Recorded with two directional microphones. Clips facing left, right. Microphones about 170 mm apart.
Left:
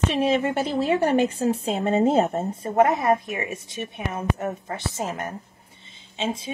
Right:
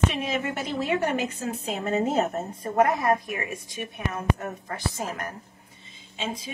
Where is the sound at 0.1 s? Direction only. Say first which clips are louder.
Left 7 dB; 30° left (ahead or behind).